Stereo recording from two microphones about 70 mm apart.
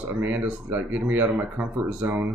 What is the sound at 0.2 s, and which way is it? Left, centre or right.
Speech, right.